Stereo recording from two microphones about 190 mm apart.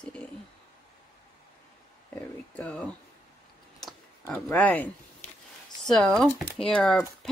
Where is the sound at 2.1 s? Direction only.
10° left (ahead or behind).